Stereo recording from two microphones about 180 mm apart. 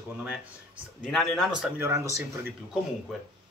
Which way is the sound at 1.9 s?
15° right (ahead or behind).